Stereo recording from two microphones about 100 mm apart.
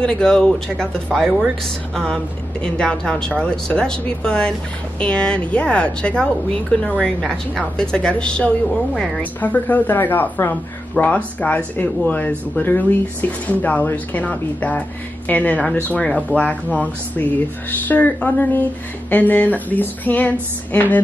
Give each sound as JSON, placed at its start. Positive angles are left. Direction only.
{"t": 0.0, "sound": "speech", "side_deg": 10}
{"t": 2.6, "sound": "speech", "side_deg": 10}
{"t": 9.2, "sound": "speech", "side_deg": 15}